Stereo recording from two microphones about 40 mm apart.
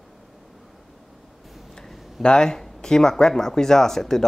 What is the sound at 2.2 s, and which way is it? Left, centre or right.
Speech, centre.